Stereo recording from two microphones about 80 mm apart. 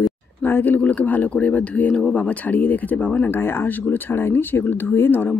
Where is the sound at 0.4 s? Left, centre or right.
Left.